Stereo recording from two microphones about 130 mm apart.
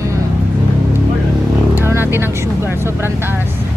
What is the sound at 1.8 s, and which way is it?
Vehicle, 15° right (ahead or behind).